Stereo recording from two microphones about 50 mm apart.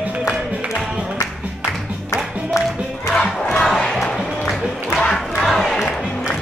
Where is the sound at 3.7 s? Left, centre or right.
Centre.